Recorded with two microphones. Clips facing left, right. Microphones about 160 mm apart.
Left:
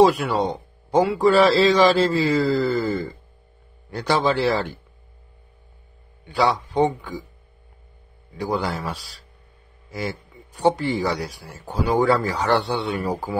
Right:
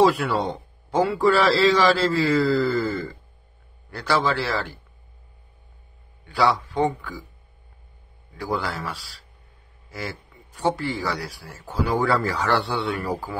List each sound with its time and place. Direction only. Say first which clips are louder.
0.0 s speech: left 2 dB; 20° left (ahead or behind)
6.2 s speech: left 1 dB; 20° left (ahead or behind)
8.4 s speech: left 3 dB; 20° left (ahead or behind)